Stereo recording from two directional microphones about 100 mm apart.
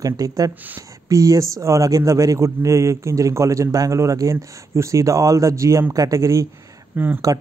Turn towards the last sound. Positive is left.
turn(degrees=-20)  # may be behind; listen again after turning